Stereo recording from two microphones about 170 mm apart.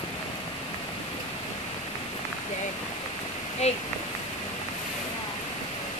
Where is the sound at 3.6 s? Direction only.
40° left (ahead or behind).